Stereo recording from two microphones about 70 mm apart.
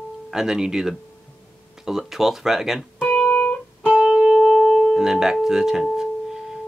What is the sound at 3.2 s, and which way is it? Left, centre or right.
Music, centre.